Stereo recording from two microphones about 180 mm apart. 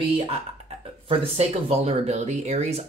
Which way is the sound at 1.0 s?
30° right (ahead or behind).